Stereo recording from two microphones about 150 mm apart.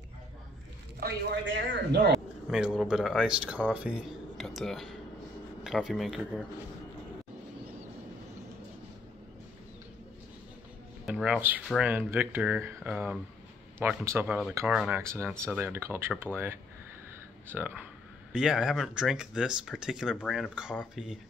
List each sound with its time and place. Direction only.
0.9 s speech: 90° right
2.5 s speech: 5° right (ahead or behind)
11.1 s speech: 5° right (ahead or behind)
15.0 s speech: 20° right (ahead or behind)